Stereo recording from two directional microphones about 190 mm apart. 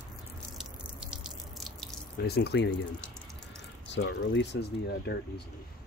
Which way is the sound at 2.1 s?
60° left (ahead or behind).